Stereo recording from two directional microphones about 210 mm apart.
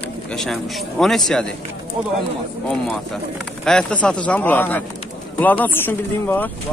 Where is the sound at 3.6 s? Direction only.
5° left (ahead or behind).